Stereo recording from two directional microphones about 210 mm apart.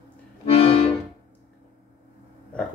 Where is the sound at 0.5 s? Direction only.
25° left (ahead or behind).